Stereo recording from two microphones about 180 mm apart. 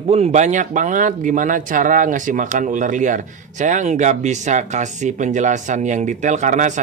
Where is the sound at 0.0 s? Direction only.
35° right (ahead or behind).